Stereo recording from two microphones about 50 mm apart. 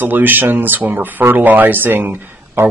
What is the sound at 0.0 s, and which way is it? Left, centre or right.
Speech, right.